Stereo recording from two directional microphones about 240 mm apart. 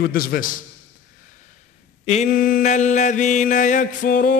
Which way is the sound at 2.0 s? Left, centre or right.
Left.